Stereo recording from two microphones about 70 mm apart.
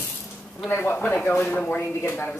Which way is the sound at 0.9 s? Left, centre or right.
Left.